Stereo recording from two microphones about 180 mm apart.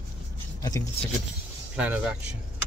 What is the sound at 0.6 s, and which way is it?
Speech, 20° left (ahead or behind).